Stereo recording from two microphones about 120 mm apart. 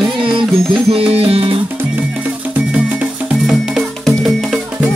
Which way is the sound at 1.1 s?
55° right (ahead or behind).